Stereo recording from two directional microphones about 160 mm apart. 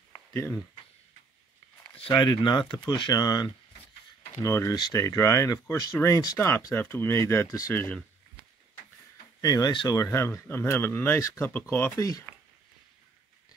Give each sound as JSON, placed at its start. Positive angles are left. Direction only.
{"t": 0.3, "sound": "speech", "side_deg": 15}
{"t": 2.0, "sound": "speech", "side_deg": 30}
{"t": 9.4, "sound": "speech", "side_deg": 25}